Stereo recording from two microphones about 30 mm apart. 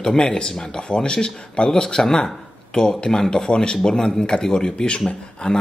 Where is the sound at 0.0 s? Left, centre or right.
Left.